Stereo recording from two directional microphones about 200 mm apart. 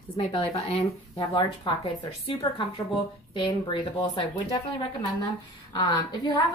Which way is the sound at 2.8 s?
15° left (ahead or behind).